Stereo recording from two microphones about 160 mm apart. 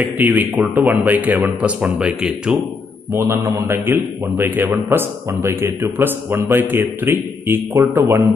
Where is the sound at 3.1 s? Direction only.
15° right (ahead or behind).